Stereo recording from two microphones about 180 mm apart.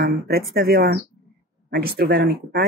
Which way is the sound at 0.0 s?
55° right (ahead or behind).